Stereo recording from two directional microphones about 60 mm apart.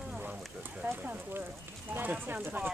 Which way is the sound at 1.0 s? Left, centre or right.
Right.